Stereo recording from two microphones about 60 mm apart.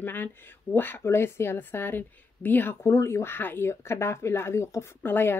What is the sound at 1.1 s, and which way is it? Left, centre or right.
Speech, left.